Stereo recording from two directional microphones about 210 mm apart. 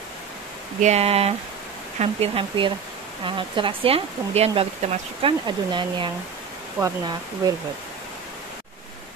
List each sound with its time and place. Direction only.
0.7 s speech: 30° right (ahead or behind)